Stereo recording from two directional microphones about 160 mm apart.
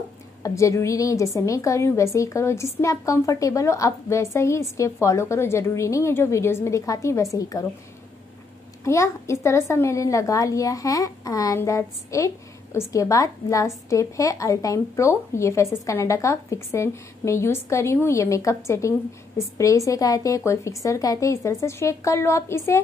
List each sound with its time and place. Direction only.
0.4 s a woman's voice: 20° left (ahead or behind)
8.8 s a woman's voice: 20° left (ahead or behind)